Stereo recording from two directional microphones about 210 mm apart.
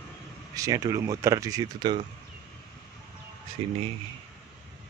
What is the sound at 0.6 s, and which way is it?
Speech, 15° right (ahead or behind).